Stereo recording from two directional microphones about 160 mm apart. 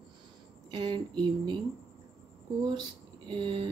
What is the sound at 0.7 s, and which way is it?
Speech, 30° right (ahead or behind).